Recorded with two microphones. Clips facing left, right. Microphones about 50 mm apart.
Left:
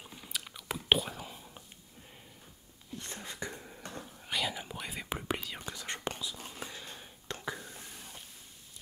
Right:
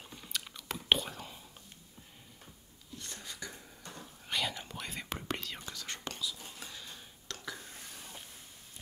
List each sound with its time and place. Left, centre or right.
0.0 s whispering: centre
3.0 s a sound: left
4.3 s whispering: centre; by 7.6 s left